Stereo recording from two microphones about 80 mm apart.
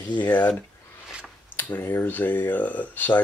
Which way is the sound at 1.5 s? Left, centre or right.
Left.